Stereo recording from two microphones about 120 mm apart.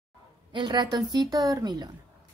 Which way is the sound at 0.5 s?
40° right (ahead or behind).